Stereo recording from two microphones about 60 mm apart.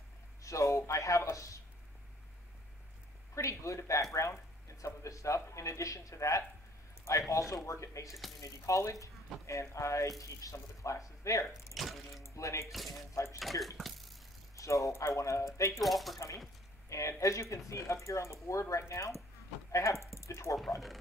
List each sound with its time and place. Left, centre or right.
0.4 s speech: left
3.3 s speech: left
11.7 s water: centre
12.2 s speech: left
12.7 s water: centre
13.1 s speech: left
13.4 s water: centre
13.7 s cough: centre
14.5 s speech: left
15.8 s water: centre
17.2 s speech: left